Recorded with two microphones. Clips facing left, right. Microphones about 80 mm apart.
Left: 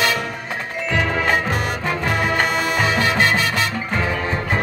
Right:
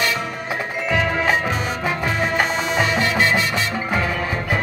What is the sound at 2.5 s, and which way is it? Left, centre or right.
Music, left.